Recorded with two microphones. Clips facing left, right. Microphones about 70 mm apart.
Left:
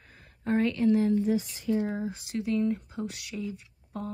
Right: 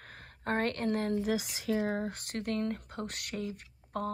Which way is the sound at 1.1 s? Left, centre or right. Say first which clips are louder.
Left 5 dB; right.